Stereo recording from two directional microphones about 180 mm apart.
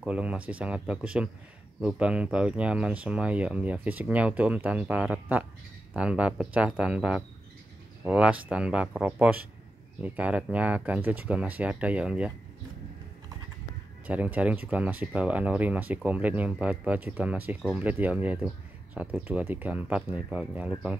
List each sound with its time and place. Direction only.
0.0 s speech: 5° right (ahead or behind)
14.0 s speech: 10° right (ahead or behind)